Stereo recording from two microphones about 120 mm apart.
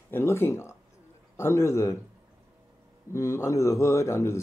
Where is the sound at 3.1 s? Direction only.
25° left (ahead or behind).